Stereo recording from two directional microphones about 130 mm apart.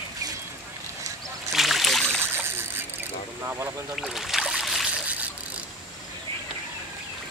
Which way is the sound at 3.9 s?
Centre (ahead or behind).